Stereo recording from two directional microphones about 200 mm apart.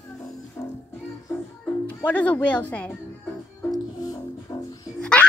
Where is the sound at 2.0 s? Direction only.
10° left (ahead or behind).